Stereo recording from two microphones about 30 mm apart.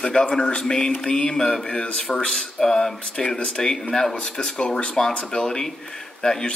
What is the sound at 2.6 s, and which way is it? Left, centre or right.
Speech, centre.